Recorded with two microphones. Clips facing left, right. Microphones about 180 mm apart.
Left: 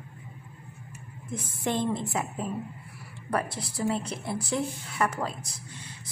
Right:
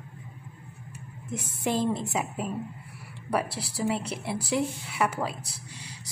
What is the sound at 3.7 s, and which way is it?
Speech, 10° right (ahead or behind).